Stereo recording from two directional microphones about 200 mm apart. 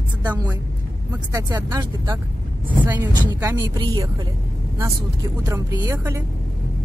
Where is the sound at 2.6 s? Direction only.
10° right (ahead or behind).